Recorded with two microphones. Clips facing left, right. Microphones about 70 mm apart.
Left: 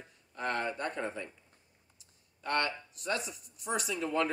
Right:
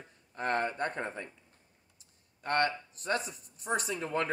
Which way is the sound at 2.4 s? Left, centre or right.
Right.